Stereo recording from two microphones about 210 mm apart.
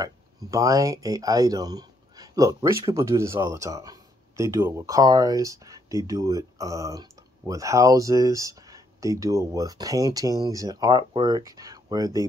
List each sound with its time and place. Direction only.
0.0 s speech: 15° right (ahead or behind)